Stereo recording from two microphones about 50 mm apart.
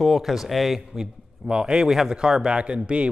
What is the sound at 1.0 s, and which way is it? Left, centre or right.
A man's voice, centre.